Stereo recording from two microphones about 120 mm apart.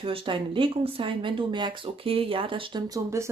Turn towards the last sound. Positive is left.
turn(degrees=-25)  # may be behind; listen again after turning